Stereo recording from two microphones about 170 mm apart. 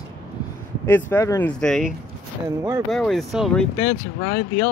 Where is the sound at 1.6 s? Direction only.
Centre (ahead or behind).